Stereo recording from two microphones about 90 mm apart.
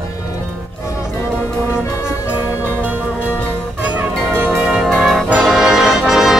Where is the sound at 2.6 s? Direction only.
20° right (ahead or behind).